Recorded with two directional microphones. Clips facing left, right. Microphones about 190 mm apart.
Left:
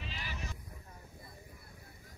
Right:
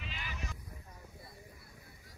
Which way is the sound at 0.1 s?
35° left (ahead or behind).